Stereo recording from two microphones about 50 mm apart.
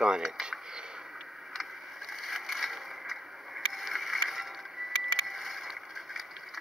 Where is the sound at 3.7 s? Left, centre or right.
Centre.